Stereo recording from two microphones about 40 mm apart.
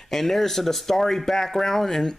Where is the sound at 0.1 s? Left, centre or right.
Centre.